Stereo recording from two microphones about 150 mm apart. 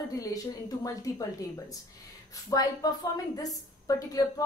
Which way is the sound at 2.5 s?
20° left (ahead or behind).